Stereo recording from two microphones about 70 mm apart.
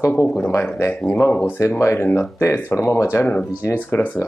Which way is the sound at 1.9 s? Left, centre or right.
Left.